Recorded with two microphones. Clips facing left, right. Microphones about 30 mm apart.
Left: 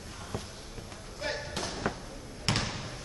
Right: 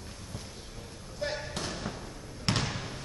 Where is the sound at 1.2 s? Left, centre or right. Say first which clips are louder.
Even; centre.